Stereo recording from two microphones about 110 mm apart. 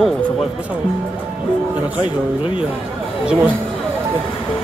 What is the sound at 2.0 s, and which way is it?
Speech, 50° left (ahead or behind).